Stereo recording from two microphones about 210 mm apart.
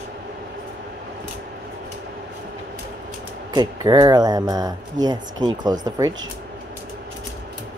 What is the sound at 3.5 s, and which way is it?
Speech, 20° right (ahead or behind).